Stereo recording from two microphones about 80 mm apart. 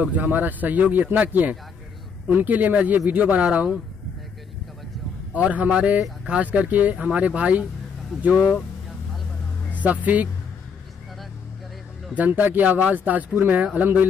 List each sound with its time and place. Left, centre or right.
0.0 s a man's voice: centre
5.3 s speech: centre
9.8 s a man's voice: centre
12.2 s a man's voice: right